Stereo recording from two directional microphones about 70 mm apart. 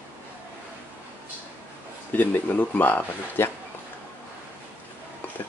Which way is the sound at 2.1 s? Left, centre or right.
Left.